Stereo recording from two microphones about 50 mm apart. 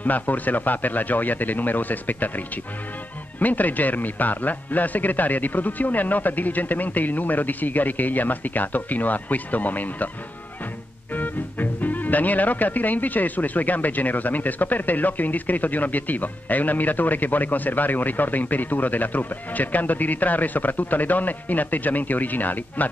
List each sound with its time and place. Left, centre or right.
0.0 s speech: left
11.1 s speech: left